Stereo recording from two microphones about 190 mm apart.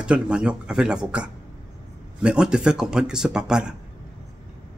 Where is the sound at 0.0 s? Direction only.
5° right (ahead or behind).